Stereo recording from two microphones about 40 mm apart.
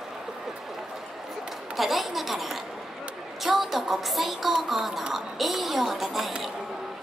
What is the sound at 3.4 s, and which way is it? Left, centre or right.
Music, centre.